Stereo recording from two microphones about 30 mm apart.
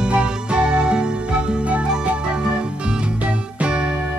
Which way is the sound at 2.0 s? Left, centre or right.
Right.